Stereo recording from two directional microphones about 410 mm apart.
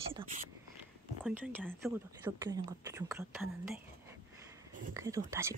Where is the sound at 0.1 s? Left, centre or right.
Centre.